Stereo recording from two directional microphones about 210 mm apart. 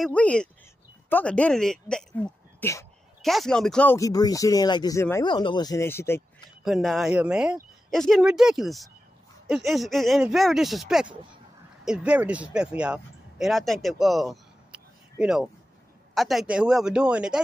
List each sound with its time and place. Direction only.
0.0 s speech: 5° left (ahead or behind)
3.2 s speech: centre (ahead or behind)
6.6 s speech: centre (ahead or behind)